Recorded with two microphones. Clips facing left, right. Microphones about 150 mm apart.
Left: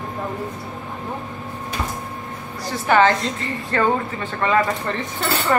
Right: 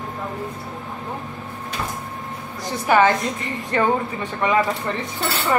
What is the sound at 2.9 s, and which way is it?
A woman's voice, 15° right (ahead or behind).